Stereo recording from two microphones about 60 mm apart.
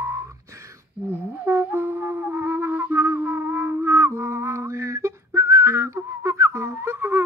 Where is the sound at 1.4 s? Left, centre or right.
Right.